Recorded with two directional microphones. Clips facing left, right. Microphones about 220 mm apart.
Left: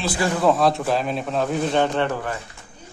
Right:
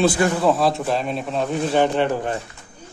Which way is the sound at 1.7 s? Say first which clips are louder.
Right 4 dB; 15° right (ahead or behind).